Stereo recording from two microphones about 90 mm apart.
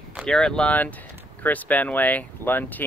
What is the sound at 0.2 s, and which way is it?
Speech, 10° left (ahead or behind).